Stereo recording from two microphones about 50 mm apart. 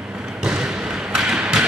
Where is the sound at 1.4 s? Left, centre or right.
Centre.